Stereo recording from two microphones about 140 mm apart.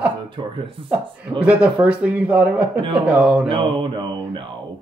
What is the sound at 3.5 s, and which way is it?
Speech, 40° right (ahead or behind).